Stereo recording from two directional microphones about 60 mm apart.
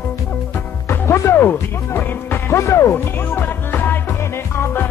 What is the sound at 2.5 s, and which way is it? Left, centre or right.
Music, left.